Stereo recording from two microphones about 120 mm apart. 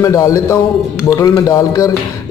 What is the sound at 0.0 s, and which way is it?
A man's voice, 25° left (ahead or behind).